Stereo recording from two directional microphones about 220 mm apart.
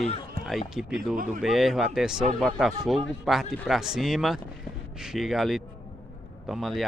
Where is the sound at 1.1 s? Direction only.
40° right (ahead or behind).